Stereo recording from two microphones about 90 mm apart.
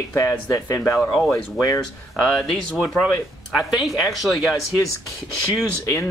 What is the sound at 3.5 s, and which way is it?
Speech, 5° right (ahead or behind).